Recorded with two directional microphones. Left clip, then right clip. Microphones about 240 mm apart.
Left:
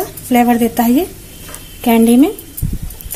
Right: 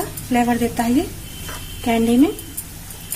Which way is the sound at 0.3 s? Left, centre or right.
Left.